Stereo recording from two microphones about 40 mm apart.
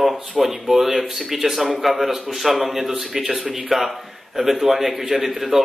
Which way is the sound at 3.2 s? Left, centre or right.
Right.